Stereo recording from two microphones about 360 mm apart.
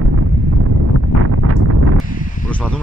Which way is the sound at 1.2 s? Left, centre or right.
Right.